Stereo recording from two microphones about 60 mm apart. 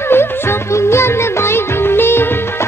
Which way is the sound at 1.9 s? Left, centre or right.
Left.